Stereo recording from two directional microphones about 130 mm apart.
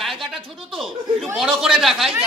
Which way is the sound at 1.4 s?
5° right (ahead or behind).